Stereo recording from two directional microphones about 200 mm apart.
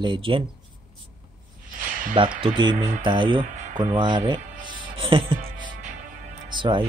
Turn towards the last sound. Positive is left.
turn(degrees=-25)  # may be behind; listen again after turning